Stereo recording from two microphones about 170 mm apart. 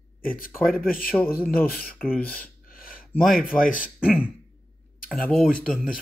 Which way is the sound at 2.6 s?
55° left (ahead or behind).